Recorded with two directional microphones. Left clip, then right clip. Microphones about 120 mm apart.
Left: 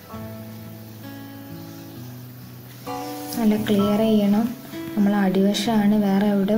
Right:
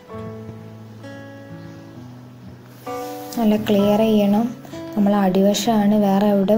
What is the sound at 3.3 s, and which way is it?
Speech, 20° right (ahead or behind).